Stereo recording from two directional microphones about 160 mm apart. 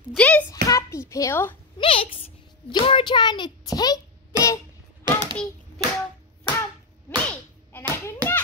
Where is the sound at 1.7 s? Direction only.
35° left (ahead or behind).